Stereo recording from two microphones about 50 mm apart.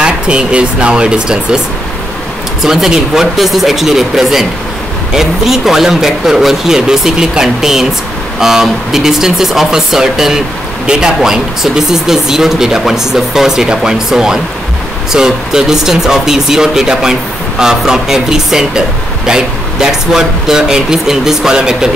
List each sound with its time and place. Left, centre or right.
0.0 s speech: centre
2.6 s speech: centre